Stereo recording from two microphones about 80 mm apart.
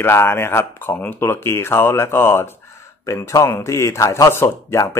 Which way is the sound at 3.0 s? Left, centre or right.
Left.